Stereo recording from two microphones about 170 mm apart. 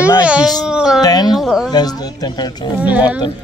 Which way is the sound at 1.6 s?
25° left (ahead or behind).